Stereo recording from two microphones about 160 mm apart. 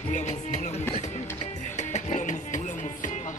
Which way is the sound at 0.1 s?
50° left (ahead or behind).